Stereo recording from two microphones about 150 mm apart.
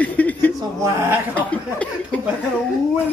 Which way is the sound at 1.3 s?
10° left (ahead or behind).